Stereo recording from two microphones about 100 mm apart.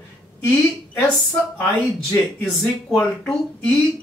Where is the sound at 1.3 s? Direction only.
15° left (ahead or behind).